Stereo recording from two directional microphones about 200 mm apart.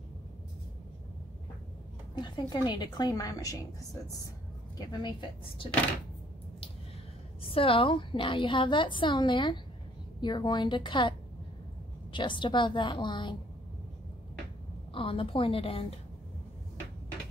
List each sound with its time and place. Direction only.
2.1 s a woman's voice: 20° left (ahead or behind)
7.4 s a woman's voice: 25° left (ahead or behind)
14.9 s a woman's voice: 25° left (ahead or behind)